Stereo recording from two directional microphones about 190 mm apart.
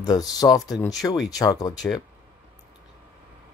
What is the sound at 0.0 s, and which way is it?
Speech, 20° left (ahead or behind).